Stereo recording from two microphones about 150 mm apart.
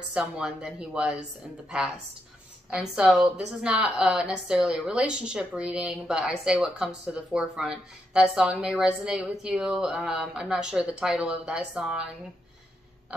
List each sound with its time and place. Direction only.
0.1 s a woman's voice: 5° right (ahead or behind)
2.7 s a woman's voice: 5° right (ahead or behind)